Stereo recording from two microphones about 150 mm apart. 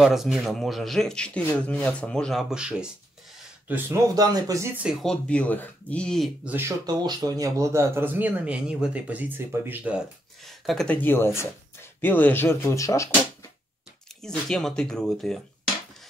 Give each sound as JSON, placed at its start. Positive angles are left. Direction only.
{"t": 0.0, "sound": "speech", "side_deg": 0}
{"t": 4.1, "sound": "speech", "side_deg": -25}
{"t": 4.8, "sound": "speech", "side_deg": 5}
{"t": 6.4, "sound": "speech", "side_deg": -15}
{"t": 6.9, "sound": "speech", "side_deg": -30}
{"t": 10.4, "sound": "speech", "side_deg": 0}
{"t": 14.2, "sound": "speech", "side_deg": 5}